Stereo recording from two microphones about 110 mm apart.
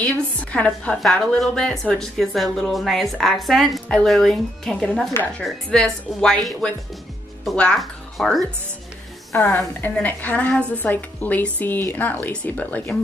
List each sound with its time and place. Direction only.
0.4 s speech: 15° left (ahead or behind)
9.4 s speech: 15° left (ahead or behind)